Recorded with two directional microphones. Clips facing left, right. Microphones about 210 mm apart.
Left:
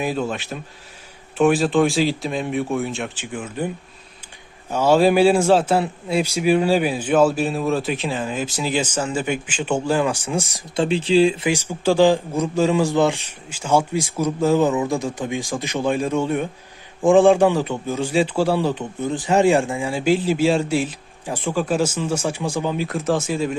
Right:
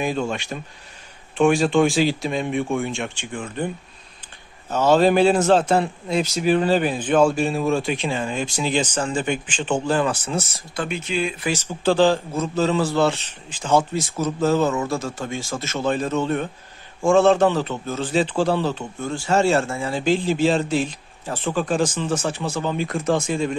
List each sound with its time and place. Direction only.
0.0 s a man's voice: 5° left (ahead or behind)
10.8 s speech: 30° left (ahead or behind)
11.4 s a man's voice: 10° left (ahead or behind)